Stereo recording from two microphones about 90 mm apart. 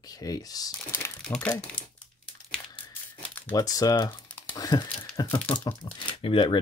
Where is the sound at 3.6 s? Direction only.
45° left (ahead or behind).